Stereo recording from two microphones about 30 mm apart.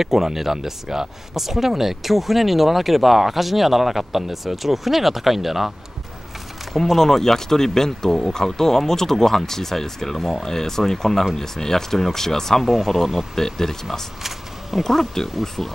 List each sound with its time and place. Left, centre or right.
0.0 s speech: centre
6.7 s speech: centre
12.8 s speech: centre
13.4 s speech: centre
14.8 s speech: centre